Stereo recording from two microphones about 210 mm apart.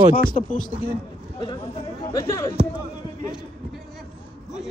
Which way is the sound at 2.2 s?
15° left (ahead or behind).